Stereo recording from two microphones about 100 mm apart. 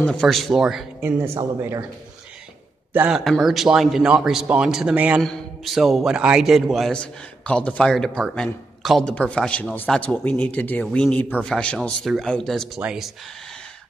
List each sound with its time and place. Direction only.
0.0 s a man's voice: 5° left (ahead or behind)
1.6 s speech: 30° right (ahead or behind)
3.1 s a man's voice: centre (ahead or behind)
5.2 s a man's voice: centre (ahead or behind)
6.9 s a man's voice: 10° left (ahead or behind); by 13.1 s 5° right (ahead or behind)